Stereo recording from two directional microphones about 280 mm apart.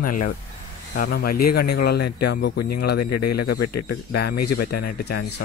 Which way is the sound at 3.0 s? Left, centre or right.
Left.